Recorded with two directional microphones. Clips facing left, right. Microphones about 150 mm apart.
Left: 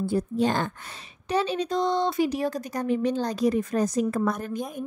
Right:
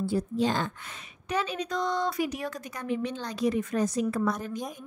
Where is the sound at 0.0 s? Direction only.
55° left (ahead or behind).